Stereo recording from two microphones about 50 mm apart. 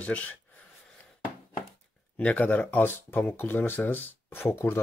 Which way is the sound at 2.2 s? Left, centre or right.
Left.